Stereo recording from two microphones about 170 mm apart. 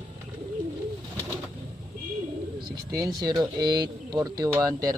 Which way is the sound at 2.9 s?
25° right (ahead or behind).